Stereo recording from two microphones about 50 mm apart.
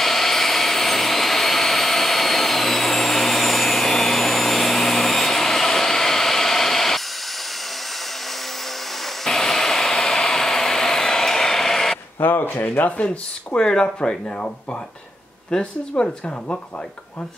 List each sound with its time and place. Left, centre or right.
0.0 s vehicle: centre
9.2 s vehicle: centre
12.2 s a sound: left
12.7 s speech: left
15.5 s speech: centre